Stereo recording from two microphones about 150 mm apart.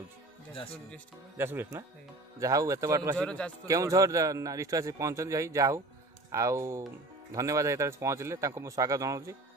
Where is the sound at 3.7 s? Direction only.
20° right (ahead or behind).